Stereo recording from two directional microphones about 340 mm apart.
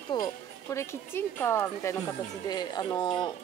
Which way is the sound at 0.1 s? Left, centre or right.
Centre.